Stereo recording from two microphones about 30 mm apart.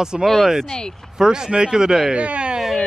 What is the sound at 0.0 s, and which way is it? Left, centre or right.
Speech, right.